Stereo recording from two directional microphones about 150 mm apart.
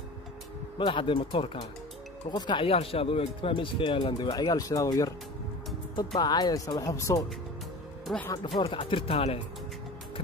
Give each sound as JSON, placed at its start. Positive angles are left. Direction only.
{"t": 0.7, "sound": "speech", "side_deg": 35}
{"t": 8.1, "sound": "speech", "side_deg": 5}
{"t": 8.5, "sound": "speech", "side_deg": 35}